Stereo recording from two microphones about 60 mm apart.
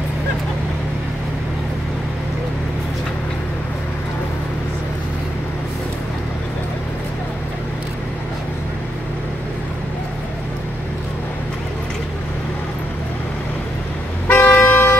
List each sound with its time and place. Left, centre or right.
14.2 s toot: left